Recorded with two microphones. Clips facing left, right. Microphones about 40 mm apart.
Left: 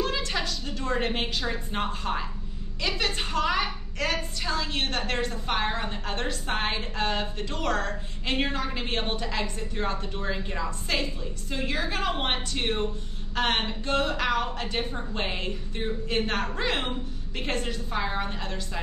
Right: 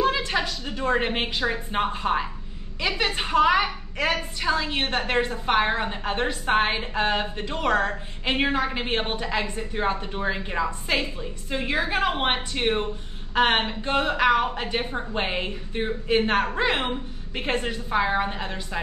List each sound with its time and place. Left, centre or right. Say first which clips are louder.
0.0 s a woman's voice: right 5 dB; centre